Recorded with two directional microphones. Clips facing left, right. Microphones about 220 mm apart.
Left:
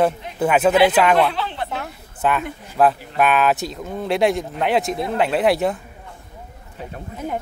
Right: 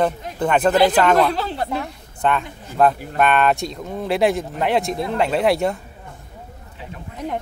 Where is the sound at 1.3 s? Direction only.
40° right (ahead or behind).